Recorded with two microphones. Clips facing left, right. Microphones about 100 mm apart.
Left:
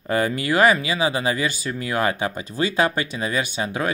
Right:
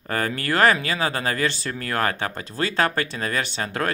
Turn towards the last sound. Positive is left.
turn(degrees=10)  # may be behind; listen again after turning